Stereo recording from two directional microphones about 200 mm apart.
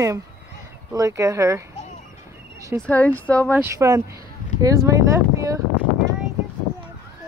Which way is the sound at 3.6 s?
15° right (ahead or behind).